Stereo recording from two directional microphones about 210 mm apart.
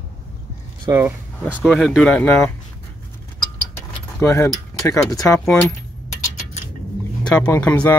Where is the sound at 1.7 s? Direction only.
Centre (ahead or behind).